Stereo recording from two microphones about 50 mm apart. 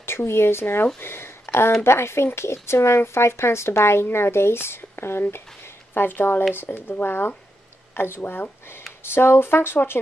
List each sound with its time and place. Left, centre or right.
0.0 s speech: left
9.0 s speech: left